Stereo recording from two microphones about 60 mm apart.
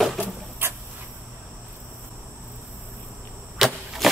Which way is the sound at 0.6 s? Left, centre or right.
Right.